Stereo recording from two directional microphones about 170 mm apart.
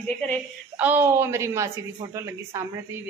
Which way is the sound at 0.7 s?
10° right (ahead or behind).